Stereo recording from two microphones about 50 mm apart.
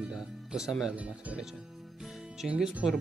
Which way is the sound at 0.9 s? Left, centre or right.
Right.